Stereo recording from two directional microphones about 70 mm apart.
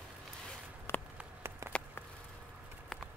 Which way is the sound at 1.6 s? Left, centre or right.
Right.